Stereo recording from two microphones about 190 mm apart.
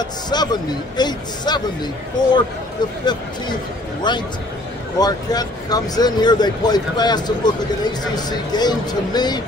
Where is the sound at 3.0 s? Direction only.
25° left (ahead or behind).